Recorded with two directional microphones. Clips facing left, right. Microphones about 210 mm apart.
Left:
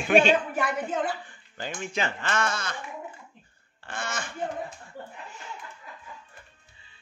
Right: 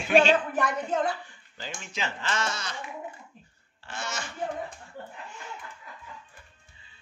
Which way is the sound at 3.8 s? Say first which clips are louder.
Left 2 dB; 55° left (ahead or behind).